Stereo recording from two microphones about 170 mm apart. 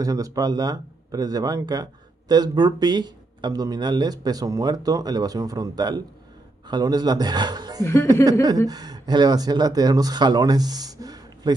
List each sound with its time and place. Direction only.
0.0 s a man's voice: 20° right (ahead or behind)
7.8 s speech: 15° left (ahead or behind)
8.3 s speech: 20° right (ahead or behind)